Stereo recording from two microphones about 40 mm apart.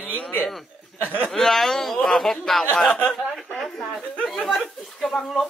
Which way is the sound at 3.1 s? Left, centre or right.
Centre.